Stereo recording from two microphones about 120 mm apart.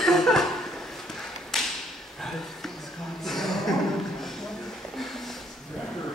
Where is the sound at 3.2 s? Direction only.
Centre (ahead or behind).